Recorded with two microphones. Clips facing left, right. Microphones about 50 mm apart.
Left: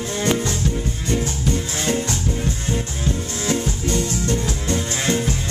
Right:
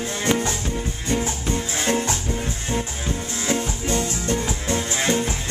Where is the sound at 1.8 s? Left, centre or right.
Centre.